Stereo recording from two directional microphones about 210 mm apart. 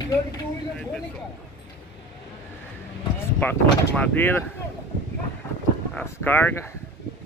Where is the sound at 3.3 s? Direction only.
5° left (ahead or behind).